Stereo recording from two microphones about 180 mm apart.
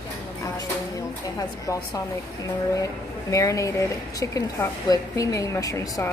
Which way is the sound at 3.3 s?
15° left (ahead or behind).